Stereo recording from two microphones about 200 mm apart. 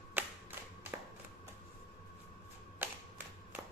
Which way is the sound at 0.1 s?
10° right (ahead or behind).